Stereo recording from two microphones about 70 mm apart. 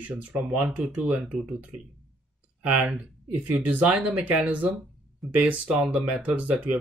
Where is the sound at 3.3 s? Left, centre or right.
Right.